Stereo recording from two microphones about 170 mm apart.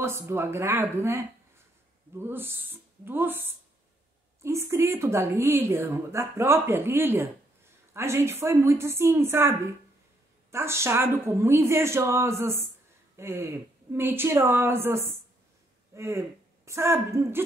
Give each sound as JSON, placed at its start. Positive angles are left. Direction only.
{"t": 0.0, "sound": "a woman's voice", "side_deg": -15}